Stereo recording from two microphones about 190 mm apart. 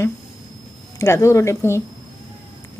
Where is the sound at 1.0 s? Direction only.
15° left (ahead or behind).